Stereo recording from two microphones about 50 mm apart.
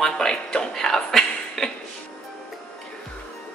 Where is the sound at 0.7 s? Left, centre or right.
Centre.